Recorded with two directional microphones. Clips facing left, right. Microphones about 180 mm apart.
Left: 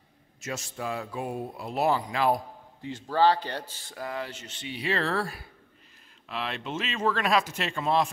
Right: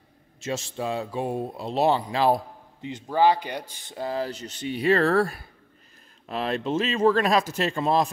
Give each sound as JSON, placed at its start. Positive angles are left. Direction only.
{"t": 0.4, "sound": "speech", "side_deg": -25}